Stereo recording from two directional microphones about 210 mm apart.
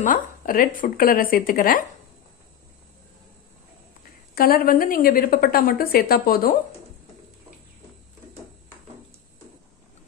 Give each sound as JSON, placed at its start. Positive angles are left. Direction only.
{"t": 0.0, "sound": "speech", "side_deg": 40}
{"t": 4.4, "sound": "a woman's voice", "side_deg": 45}